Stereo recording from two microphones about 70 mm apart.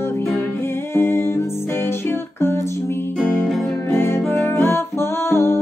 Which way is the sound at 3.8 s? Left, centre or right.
Left.